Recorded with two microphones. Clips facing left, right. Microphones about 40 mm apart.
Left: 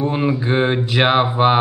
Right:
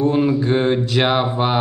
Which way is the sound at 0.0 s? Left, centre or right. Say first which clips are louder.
Right 2 dB; centre.